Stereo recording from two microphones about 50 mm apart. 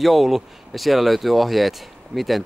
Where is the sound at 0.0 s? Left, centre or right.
Centre.